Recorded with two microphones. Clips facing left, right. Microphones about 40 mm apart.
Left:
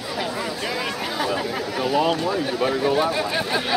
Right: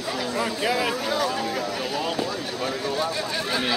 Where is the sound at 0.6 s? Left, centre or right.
Centre.